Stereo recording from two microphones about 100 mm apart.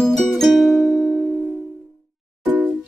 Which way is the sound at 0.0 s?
Centre (ahead or behind).